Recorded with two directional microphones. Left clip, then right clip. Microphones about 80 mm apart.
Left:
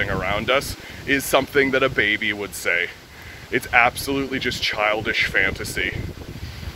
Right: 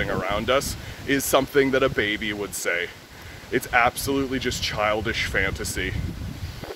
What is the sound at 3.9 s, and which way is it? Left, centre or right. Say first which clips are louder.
Speech: left 1 dB; right.